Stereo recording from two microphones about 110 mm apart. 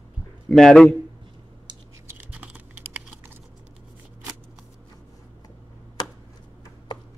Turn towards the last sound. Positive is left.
turn(degrees=40)  # may be behind; listen again after turning